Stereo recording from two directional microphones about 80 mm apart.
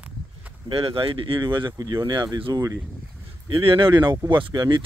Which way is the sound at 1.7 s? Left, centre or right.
Right.